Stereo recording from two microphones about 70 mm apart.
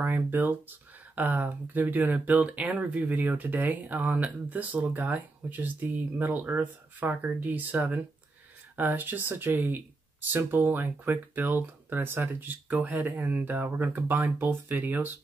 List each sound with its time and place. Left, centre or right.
0.0 s speech: right